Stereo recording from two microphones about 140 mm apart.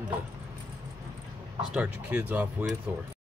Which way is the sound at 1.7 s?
10° right (ahead or behind).